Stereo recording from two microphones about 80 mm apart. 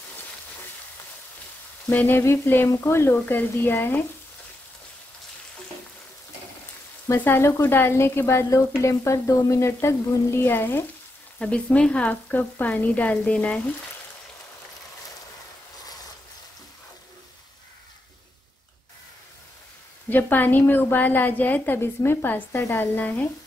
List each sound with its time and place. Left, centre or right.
1.9 s a woman's voice: left
7.2 s speech: left
11.3 s speech: centre
20.1 s a woman's voice: left